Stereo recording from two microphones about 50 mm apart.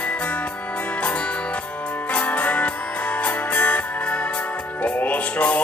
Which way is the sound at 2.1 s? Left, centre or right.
Left.